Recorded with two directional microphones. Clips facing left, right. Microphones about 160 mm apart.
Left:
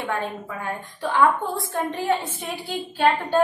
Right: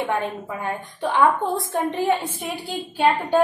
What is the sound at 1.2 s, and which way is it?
A woman's voice, 20° right (ahead or behind).